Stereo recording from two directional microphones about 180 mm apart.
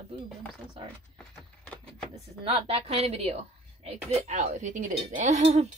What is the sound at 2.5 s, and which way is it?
A woman's voice, 30° right (ahead or behind).